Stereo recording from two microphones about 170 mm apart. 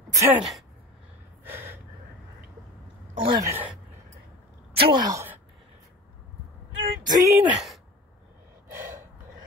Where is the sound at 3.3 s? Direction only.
15° right (ahead or behind).